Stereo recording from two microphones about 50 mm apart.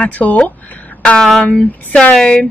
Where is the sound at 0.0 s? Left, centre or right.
Left.